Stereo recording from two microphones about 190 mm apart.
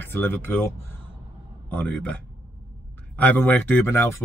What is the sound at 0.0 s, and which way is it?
Speech, 10° left (ahead or behind).